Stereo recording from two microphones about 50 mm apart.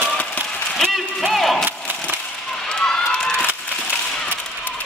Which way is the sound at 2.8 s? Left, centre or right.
Centre.